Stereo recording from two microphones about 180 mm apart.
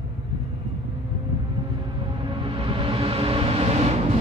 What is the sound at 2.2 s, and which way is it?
Music, 30° right (ahead or behind).